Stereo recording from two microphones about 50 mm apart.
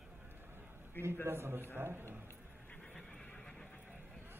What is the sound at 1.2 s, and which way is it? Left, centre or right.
A man's voice, right.